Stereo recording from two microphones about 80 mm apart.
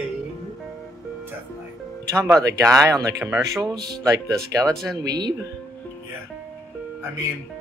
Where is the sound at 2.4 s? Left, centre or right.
Right.